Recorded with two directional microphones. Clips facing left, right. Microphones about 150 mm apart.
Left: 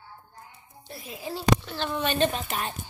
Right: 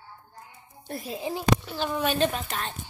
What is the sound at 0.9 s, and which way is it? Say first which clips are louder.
Speech: right 8 dB; 50° right (ahead or behind).